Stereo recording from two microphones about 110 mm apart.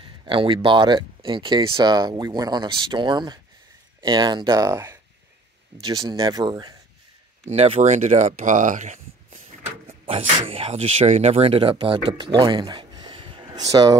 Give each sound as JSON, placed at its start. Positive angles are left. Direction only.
{"t": 0.0, "sound": "speech", "side_deg": -50}
{"t": 1.8, "sound": "speech", "side_deg": -40}
{"t": 7.4, "sound": "speech", "side_deg": -70}
{"t": 9.8, "sound": "speech", "side_deg": -65}
{"t": 13.7, "sound": "speech", "side_deg": -35}